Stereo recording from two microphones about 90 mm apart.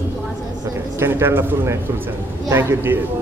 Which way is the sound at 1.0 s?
25° right (ahead or behind).